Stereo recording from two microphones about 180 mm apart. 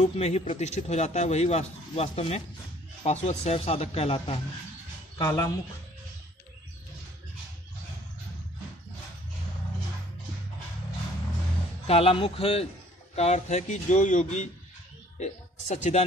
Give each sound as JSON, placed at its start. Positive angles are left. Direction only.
{"t": 0.0, "sound": "speech", "side_deg": 35}
{"t": 5.2, "sound": "speech", "side_deg": 15}
{"t": 11.9, "sound": "speech", "side_deg": 30}